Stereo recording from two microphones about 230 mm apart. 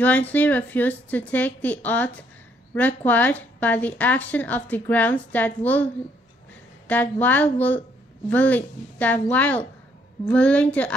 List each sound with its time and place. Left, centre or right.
0.0 s a woman's voice: centre
6.9 s a woman's voice: centre